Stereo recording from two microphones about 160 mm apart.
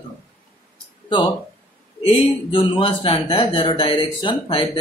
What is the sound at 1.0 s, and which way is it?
Speech, 30° left (ahead or behind).